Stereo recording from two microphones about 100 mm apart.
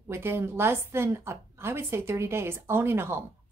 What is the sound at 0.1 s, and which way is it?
A woman's voice, 25° right (ahead or behind).